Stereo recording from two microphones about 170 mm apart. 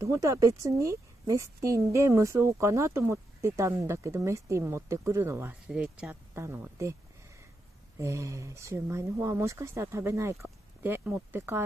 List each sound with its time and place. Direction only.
0.0 s a woman's voice: 20° right (ahead or behind)
8.0 s a woman's voice: 15° right (ahead or behind)